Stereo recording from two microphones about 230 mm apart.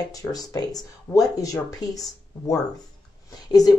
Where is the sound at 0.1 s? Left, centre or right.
Centre.